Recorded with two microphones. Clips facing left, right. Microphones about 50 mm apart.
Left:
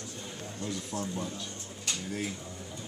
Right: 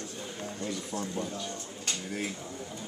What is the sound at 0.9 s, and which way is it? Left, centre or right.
Speech, right.